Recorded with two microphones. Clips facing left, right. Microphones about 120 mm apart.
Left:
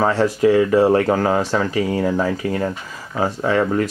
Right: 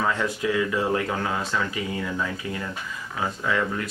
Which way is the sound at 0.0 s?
35° left (ahead or behind).